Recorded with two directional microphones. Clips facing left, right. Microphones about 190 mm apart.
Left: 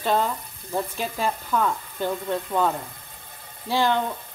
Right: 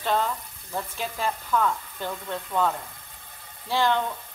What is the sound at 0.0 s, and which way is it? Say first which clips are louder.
Speech: left 2 dB; 10° left (ahead or behind).